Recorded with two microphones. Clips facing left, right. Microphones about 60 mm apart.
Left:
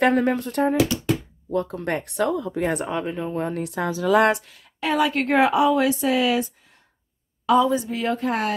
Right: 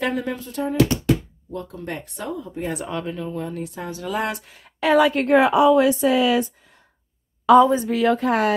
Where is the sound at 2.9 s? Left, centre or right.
Left.